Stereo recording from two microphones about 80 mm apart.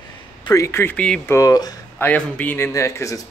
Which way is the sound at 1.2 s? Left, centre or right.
Left.